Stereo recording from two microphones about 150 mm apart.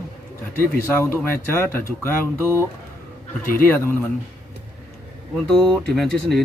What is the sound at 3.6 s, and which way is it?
Speech, 15° left (ahead or behind).